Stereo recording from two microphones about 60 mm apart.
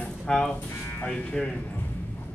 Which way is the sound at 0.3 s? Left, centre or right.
Centre.